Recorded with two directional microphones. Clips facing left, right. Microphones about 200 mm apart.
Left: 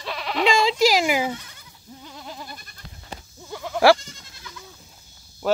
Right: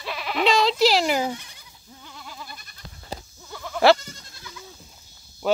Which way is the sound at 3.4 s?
15° left (ahead or behind).